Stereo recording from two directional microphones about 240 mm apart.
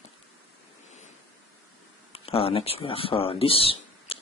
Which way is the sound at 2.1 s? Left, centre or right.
Left.